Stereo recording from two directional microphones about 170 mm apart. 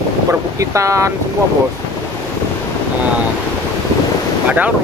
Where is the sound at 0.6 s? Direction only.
20° right (ahead or behind).